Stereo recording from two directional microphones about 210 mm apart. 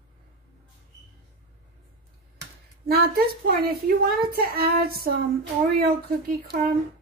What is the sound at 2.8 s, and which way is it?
A woman's voice, 45° right (ahead or behind).